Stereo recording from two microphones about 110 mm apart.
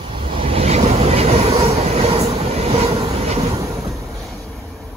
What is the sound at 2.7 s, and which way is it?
Train, 70° right (ahead or behind).